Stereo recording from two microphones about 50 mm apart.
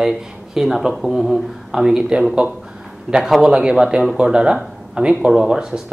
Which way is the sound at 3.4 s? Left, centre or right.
Centre.